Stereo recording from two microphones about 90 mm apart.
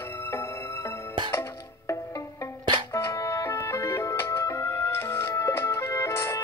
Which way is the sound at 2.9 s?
35° left (ahead or behind).